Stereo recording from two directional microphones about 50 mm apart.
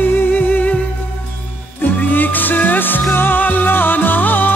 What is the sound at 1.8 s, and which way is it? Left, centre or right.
Music, left.